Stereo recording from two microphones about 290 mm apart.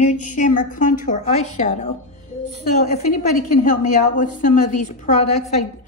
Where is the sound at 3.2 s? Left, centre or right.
Left.